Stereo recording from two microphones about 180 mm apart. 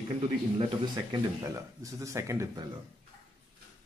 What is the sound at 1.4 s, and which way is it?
Speech, 15° right (ahead or behind).